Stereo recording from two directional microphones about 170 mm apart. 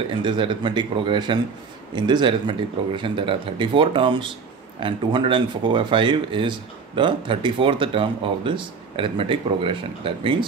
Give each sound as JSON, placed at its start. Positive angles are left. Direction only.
{"t": 0.2, "sound": "speech", "side_deg": -30}